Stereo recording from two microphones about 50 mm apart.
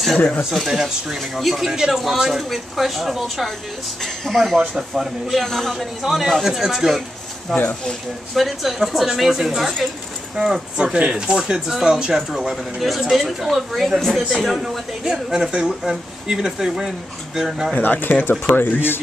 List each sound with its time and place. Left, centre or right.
0.7 s speech: centre
5.4 s speech: centre
17.7 s speech: left